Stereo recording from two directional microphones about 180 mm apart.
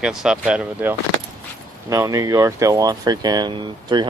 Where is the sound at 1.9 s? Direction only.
15° right (ahead or behind).